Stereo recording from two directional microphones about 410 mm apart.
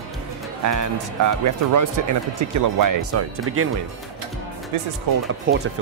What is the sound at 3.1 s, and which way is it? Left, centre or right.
Speech, right.